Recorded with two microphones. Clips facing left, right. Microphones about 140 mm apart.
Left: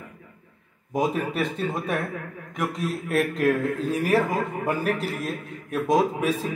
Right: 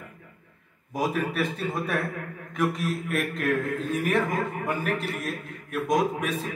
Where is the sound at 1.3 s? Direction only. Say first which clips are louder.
Left 2 dB; 25° left (ahead or behind).